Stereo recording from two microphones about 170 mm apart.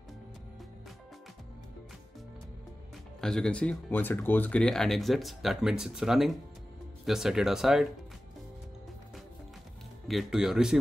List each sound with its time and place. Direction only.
3.2 s speech: 5° left (ahead or behind)
10.0 s speech: centre (ahead or behind)